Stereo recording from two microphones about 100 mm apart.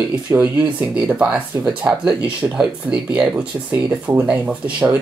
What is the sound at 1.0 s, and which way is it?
Speech, 10° right (ahead or behind).